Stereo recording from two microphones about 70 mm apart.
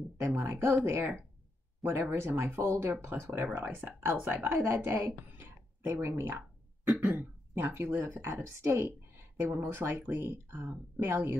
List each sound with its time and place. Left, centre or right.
0.2 s speech: right
4.8 s a sound: right
6.0 s speech: right